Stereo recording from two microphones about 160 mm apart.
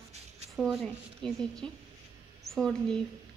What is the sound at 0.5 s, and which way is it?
A woman's voice, centre (ahead or behind).